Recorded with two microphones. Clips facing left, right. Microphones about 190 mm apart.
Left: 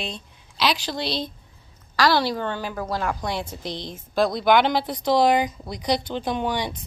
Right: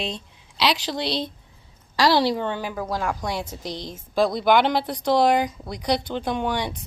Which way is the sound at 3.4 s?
40° right (ahead or behind).